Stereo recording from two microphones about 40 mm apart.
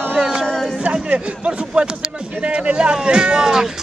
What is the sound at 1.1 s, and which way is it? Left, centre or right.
Speech, right.